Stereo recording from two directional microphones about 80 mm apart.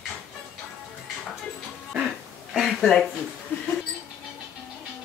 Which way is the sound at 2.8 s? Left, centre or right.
Centre.